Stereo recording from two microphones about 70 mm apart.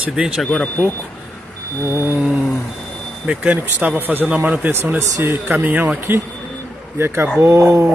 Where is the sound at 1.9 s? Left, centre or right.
Right.